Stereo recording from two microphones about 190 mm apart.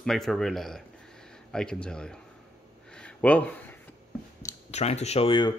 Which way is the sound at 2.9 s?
5° left (ahead or behind).